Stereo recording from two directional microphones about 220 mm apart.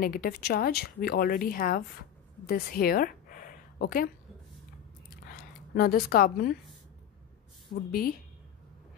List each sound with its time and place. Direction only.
0.0 s speech: 40° left (ahead or behind)
2.4 s a sound: 45° left (ahead or behind)
5.8 s speech: 40° left (ahead or behind)
7.7 s speech: 45° left (ahead or behind)